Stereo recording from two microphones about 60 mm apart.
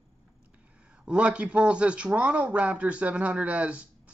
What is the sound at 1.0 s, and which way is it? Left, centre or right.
Speech, centre.